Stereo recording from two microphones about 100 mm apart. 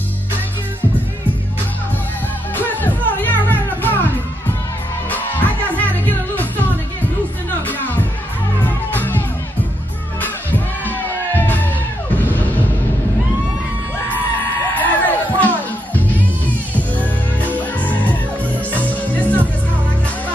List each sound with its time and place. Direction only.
2.5 s music: 20° left (ahead or behind)
5.1 s music: 15° left (ahead or behind)
10.2 s music: 20° left (ahead or behind)
14.8 s music: 15° left (ahead or behind)